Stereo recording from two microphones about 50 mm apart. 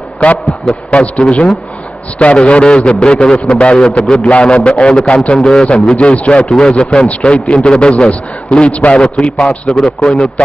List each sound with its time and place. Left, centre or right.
0.2 s a man's voice: left
9.8 s a man's voice: centre